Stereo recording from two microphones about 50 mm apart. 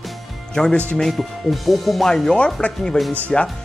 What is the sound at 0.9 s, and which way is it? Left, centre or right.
Speech, centre.